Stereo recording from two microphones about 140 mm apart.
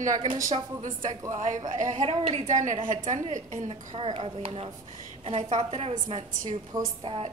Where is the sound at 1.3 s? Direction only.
70° right (ahead or behind); by 4.7 s 40° right (ahead or behind).